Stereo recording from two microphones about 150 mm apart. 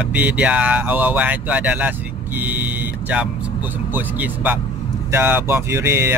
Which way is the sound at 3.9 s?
10° right (ahead or behind).